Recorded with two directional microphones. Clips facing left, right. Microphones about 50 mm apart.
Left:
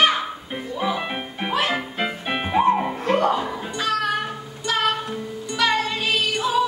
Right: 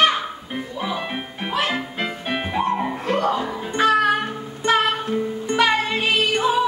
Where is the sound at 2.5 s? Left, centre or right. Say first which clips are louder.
Left 5 dB; centre.